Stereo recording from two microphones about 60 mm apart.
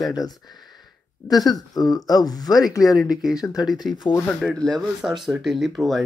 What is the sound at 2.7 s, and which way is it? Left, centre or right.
Speech, left.